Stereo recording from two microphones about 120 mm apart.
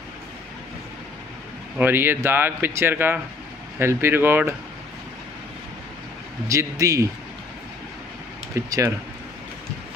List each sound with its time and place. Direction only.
1.8 s a man's voice: 15° right (ahead or behind)
6.4 s a man's voice: 25° right (ahead or behind)
8.5 s a man's voice: 20° right (ahead or behind)